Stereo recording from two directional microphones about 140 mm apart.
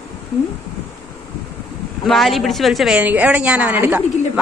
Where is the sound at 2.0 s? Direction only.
Centre (ahead or behind).